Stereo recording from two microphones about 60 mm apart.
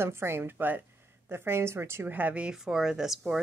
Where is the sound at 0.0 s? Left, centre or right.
Right.